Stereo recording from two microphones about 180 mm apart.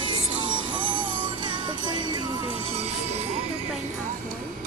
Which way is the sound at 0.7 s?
25° right (ahead or behind).